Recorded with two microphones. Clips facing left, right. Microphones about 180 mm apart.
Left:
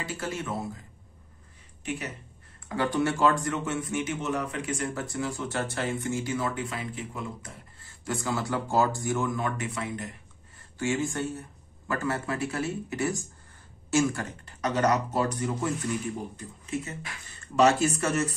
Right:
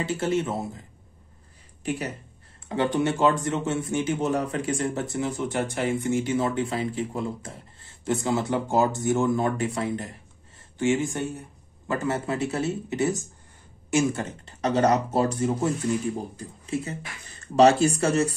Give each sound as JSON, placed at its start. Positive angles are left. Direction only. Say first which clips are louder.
{"t": 0.0, "sound": "speech", "louder": "right 8 dB", "side_deg": -25}
{"t": 1.8, "sound": "speech", "louder": "right 5 dB", "side_deg": -35}
{"t": 2.7, "sound": "speech", "louder": "right 3 dB", "side_deg": -20}
{"t": 10.8, "sound": "speech", "louder": "right 4 dB", "side_deg": -20}